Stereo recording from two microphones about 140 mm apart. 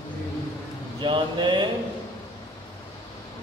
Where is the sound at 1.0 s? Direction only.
35° right (ahead or behind).